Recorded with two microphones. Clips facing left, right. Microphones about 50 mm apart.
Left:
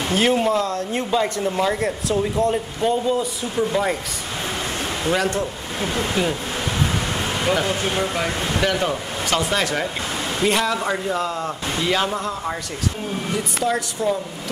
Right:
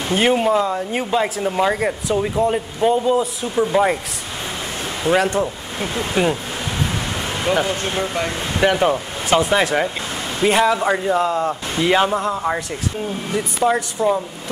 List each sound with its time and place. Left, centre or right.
0.1 s speech: centre
5.1 s speech: centre
6.2 s speech: right
7.2 s a sound: centre
7.9 s speech: centre
8.5 s speech: centre
13.3 s speech: centre